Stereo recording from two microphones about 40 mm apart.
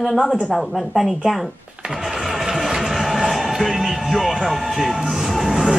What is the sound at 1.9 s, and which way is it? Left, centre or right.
Music, centre.